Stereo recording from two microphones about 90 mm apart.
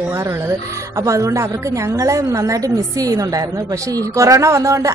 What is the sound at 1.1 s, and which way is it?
Speech, 35° right (ahead or behind).